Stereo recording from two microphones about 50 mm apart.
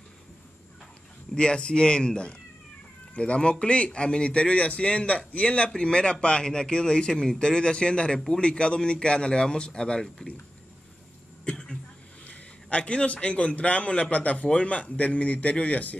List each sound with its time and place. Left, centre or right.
1.3 s a man's voice: centre
11.4 s cough: centre
12.3 s a man's voice: left